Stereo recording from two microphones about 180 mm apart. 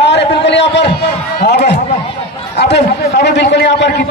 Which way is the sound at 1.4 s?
65° left (ahead or behind).